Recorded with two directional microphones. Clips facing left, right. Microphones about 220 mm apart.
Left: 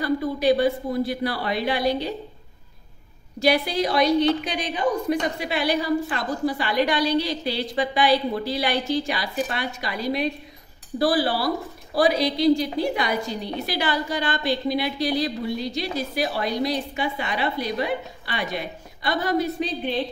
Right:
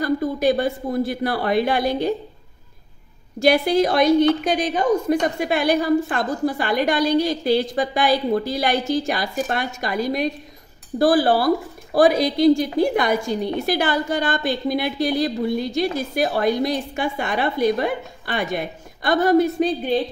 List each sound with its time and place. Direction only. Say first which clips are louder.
0.0 s a woman's voice: right 2 dB; 45° right (ahead or behind)
3.3 s a woman's voice: right 5 dB; 50° right (ahead or behind)